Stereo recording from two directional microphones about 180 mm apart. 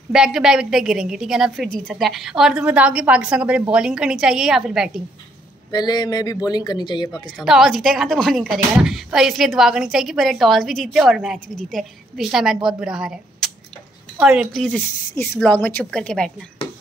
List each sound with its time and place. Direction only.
0.1 s speech: 5° right (ahead or behind)
5.7 s speech: 20° left (ahead or behind)
7.3 s speech: centre (ahead or behind)